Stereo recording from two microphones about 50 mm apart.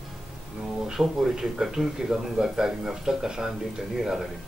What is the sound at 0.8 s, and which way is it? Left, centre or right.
Speech, centre.